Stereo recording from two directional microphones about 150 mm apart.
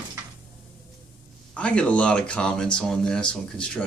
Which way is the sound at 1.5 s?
5° left (ahead or behind).